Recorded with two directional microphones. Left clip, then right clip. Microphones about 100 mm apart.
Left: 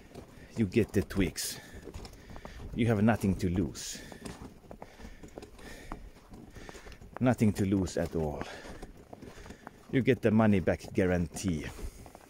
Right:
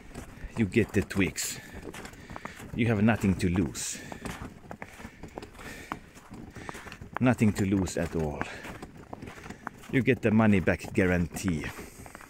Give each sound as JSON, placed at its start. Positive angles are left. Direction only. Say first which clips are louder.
{"t": 0.6, "sound": "speech", "louder": "right 2 dB", "side_deg": 25}
{"t": 2.7, "sound": "speech", "louder": "right 1 dB", "side_deg": 35}
{"t": 3.2, "sound": "speech", "louder": "right 3 dB", "side_deg": 10}
{"t": 3.8, "sound": "a sound", "louder": "right 5 dB", "side_deg": 25}
{"t": 5.9, "sound": "clip-clop", "louder": "right 9 dB", "side_deg": 0}
{"t": 7.2, "sound": "speech", "louder": "right 2 dB", "side_deg": 20}
{"t": 9.8, "sound": "speech", "louder": "right 1 dB", "side_deg": 30}
{"t": 10.5, "sound": "speech", "louder": "right 3 dB", "side_deg": 5}